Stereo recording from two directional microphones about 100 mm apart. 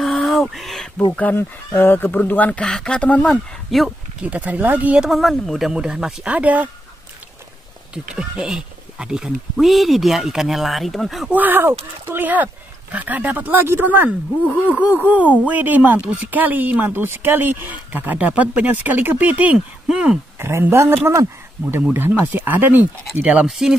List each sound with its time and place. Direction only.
0.0 s a sound: centre (ahead or behind)
1.1 s speech: 20° left (ahead or behind)
3.7 s speech: centre (ahead or behind)
4.2 s speech: 15° right (ahead or behind)
7.9 s speech: 10° right (ahead or behind)
11.2 s speech: 15° right (ahead or behind)
20.3 s speech: 25° right (ahead or behind); by 23.8 s 5° right (ahead or behind)